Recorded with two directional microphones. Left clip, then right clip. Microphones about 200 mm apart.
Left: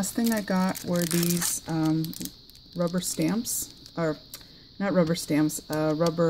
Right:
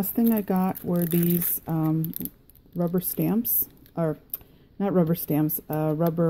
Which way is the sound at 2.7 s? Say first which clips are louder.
Even; 25° right (ahead or behind).